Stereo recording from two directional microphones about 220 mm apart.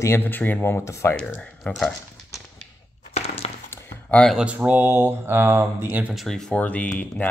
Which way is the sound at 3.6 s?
10° left (ahead or behind).